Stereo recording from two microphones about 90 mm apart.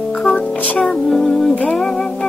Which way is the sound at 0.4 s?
15° left (ahead or behind).